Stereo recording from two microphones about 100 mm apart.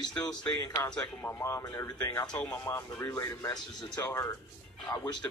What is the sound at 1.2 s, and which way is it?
Speech, 30° left (ahead or behind).